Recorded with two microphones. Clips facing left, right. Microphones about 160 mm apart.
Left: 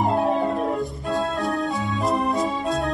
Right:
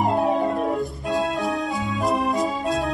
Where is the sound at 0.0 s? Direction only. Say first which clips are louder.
Even; centre (ahead or behind).